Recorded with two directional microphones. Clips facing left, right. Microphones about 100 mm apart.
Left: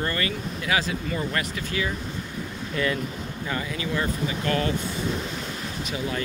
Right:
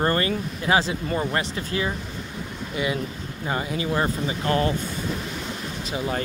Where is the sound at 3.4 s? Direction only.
30° right (ahead or behind).